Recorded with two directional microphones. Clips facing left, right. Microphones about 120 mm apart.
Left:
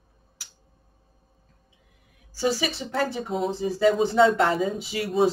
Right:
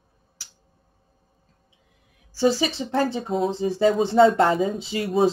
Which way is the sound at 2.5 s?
25° right (ahead or behind).